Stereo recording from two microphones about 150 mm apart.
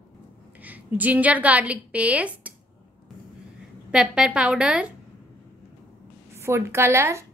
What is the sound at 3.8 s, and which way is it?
A woman's voice, 5° right (ahead or behind).